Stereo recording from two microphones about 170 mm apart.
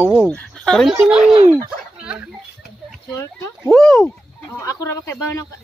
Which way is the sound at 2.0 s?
5° right (ahead or behind).